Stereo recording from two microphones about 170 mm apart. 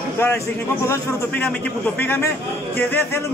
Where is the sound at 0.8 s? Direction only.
15° left (ahead or behind).